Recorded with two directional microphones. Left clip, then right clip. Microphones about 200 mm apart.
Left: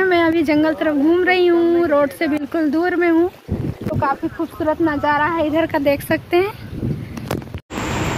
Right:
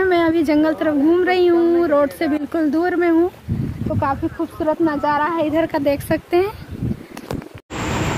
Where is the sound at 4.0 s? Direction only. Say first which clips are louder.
Left 1 dB; 25° left (ahead or behind).